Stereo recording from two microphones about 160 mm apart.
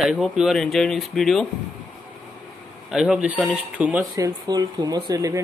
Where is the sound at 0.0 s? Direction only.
Centre (ahead or behind).